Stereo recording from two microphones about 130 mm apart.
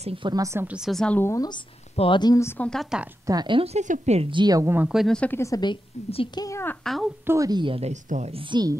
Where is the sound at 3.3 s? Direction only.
35° right (ahead or behind).